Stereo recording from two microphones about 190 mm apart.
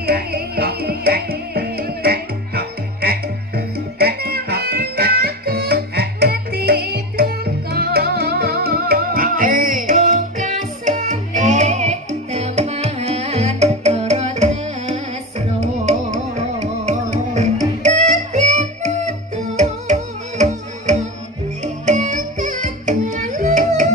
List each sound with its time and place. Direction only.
0.0 s music: 55° right (ahead or behind)